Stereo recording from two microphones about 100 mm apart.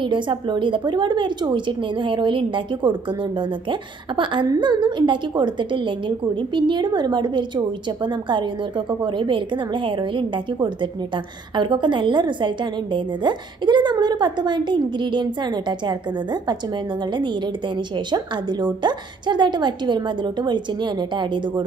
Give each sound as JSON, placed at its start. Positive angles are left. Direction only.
{"t": 0.0, "sound": "a woman's voice", "side_deg": -50}